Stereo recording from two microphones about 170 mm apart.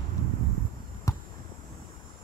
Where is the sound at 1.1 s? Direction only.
20° left (ahead or behind).